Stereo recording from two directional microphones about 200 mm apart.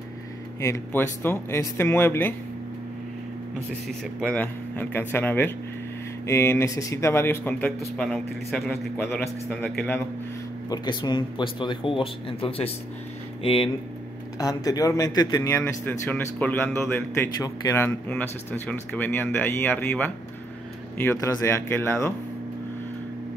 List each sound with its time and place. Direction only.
0.6 s speech: 15° left (ahead or behind)
4.3 s a man's voice: 10° left (ahead or behind)
10.7 s speech: 20° left (ahead or behind)